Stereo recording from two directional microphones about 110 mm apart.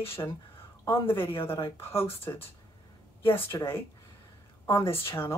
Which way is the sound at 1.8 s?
20° left (ahead or behind).